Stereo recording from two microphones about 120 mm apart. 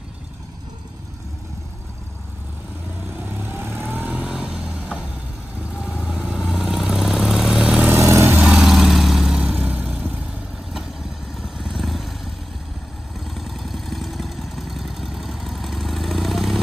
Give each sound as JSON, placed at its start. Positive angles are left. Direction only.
{"t": 3.3, "sound": "vehicle", "side_deg": -20}
{"t": 7.9, "sound": "vehicle", "side_deg": -20}
{"t": 8.4, "sound": "vehicle", "side_deg": -5}
{"t": 11.3, "sound": "vehicle", "side_deg": 0}
{"t": 13.2, "sound": "vehicle", "side_deg": 0}